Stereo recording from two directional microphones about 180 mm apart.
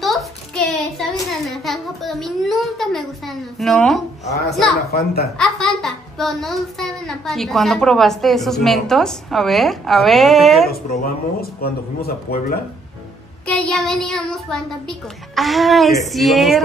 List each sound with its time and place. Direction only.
0.0 s a sound: centre (ahead or behind)
1.2 s a child's voice: centre (ahead or behind)
4.3 s a man's voice: 65° left (ahead or behind)
5.4 s a child's voice: centre (ahead or behind)
11.6 s a man's voice: 60° left (ahead or behind)
13.5 s a child's voice: 5° left (ahead or behind)